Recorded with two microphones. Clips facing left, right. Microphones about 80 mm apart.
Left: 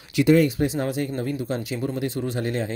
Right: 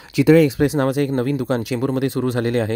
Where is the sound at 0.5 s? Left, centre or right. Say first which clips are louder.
Right 6 dB; right.